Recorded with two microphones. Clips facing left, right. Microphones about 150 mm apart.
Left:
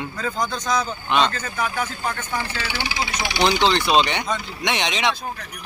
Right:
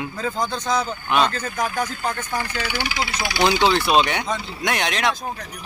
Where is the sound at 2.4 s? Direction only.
25° left (ahead or behind).